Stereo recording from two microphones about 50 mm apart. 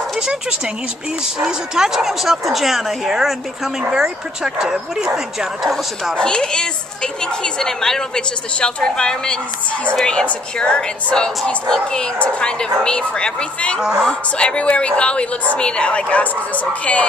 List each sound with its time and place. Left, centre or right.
1.4 s speech: centre
6.1 s speech: centre
13.7 s speech: centre
14.4 s a woman's voice: left